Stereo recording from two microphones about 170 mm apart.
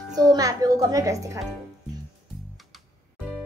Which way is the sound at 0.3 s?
20° right (ahead or behind).